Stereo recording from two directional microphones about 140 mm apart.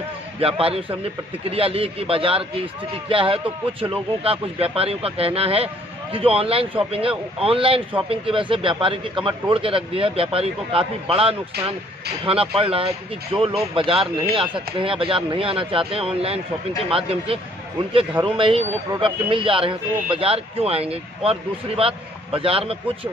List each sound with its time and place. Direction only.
0.4 s a man's voice: 40° right (ahead or behind)